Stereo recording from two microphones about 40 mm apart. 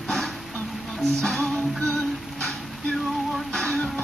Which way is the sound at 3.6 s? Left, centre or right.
Left.